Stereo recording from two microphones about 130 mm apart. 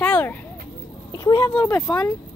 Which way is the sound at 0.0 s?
10° left (ahead or behind).